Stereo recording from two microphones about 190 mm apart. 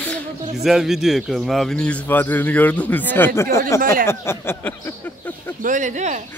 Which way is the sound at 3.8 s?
45° right (ahead or behind).